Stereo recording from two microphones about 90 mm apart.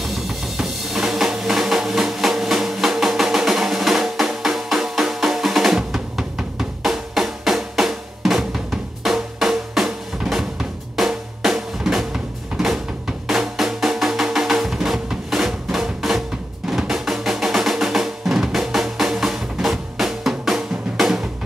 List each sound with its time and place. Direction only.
0.0 s drum: centre (ahead or behind)
13.3 s music: centre (ahead or behind)